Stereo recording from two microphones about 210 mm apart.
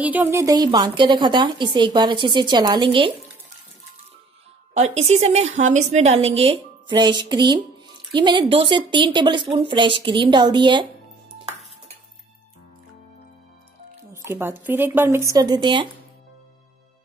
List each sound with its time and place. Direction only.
0.0 s a woman's voice: 10° right (ahead or behind)
4.7 s a woman's voice: 30° right (ahead or behind)
14.1 s speech: 10° right (ahead or behind)